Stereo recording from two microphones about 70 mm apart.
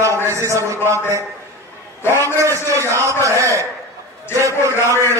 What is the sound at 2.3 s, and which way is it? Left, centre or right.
A man's voice, right.